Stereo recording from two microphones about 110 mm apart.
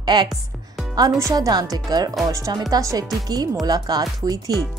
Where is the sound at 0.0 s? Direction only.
40° right (ahead or behind).